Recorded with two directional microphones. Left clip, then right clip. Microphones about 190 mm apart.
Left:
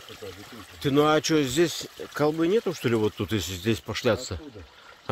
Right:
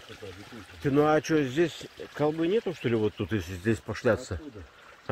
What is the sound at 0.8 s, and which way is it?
A man's voice, 15° left (ahead or behind).